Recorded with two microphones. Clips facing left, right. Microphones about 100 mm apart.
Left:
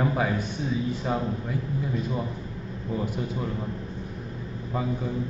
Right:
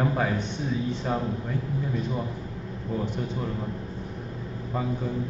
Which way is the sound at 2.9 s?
5° left (ahead or behind).